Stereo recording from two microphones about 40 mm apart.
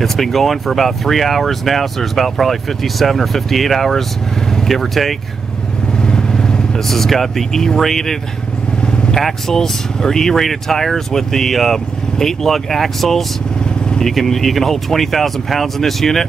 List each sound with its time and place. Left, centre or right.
0.0 s speech: centre
6.0 s vehicle: centre
6.9 s speech: centre
8.8 s vehicle: left
9.1 s speech: centre